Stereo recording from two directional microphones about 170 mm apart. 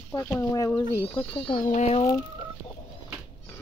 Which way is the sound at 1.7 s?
40° left (ahead or behind).